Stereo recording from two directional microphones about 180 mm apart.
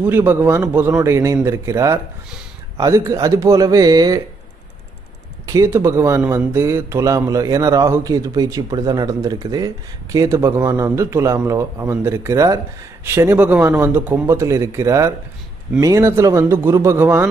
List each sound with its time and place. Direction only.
0.0 s speech: 10° right (ahead or behind)
5.5 s speech: 15° right (ahead or behind)